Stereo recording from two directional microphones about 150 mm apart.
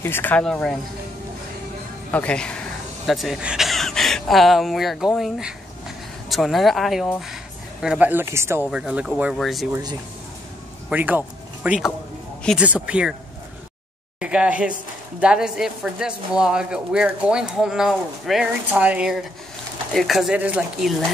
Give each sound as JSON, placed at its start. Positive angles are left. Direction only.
{"t": 0.0, "sound": "speech", "side_deg": 15}
{"t": 2.0, "sound": "speech", "side_deg": 10}
{"t": 8.6, "sound": "speech", "side_deg": -5}
{"t": 9.7, "sound": "speech", "side_deg": -25}
{"t": 10.9, "sound": "speech", "side_deg": -10}
{"t": 14.2, "sound": "speech", "side_deg": -5}